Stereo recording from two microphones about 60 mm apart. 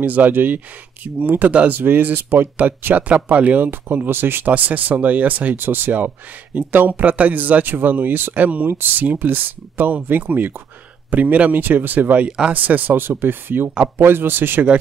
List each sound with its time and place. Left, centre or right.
0.0 s speech: right
12.3 s speech: centre
12.5 s speech: right